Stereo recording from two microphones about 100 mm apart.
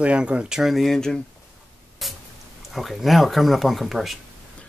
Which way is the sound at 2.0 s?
Centre (ahead or behind).